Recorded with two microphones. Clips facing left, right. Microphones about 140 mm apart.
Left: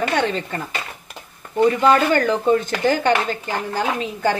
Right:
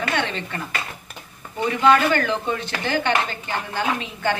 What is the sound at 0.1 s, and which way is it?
Speech, 40° left (ahead or behind).